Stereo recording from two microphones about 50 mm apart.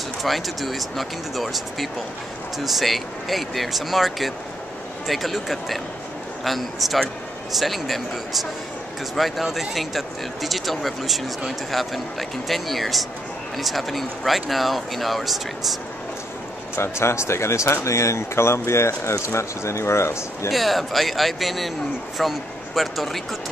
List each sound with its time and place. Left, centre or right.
0.2 s speech: centre
16.7 s speech: left
20.5 s speech: centre